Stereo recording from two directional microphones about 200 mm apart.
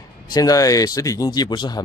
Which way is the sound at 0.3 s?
20° left (ahead or behind).